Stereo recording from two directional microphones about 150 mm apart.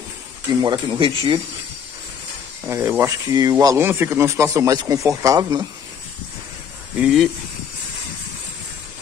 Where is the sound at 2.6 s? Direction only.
15° right (ahead or behind).